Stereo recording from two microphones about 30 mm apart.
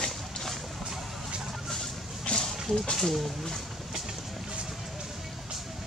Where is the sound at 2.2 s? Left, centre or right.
Left.